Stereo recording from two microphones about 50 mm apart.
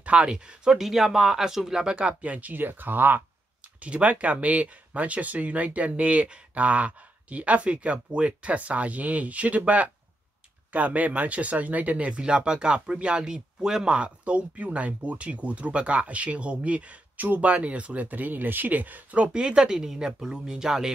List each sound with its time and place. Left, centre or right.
0.0 s speech: right
2.5 s speech: right
3.8 s speech: right
13.9 s speech: right
19.2 s speech: centre